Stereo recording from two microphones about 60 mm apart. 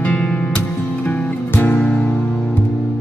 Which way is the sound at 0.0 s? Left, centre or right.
Left.